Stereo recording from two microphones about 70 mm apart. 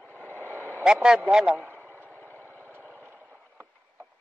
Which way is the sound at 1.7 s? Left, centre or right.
Left.